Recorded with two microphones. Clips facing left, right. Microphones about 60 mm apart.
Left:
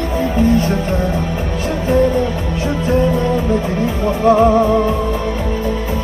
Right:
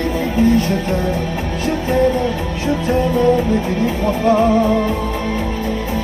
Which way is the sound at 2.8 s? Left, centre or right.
Left.